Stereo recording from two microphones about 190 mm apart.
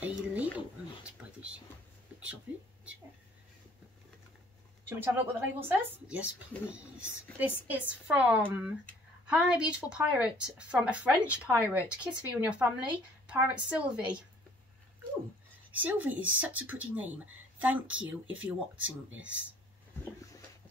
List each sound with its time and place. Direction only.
0.0 s a sound: 5° right (ahead or behind)
4.8 s a woman's voice: 10° right (ahead or behind)
15.8 s speech: 10° right (ahead or behind)
18.2 s speech: 90° right
19.1 s speech: 5° right (ahead or behind)